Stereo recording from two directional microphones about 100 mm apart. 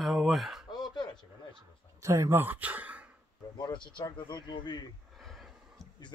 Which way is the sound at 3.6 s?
50° left (ahead or behind).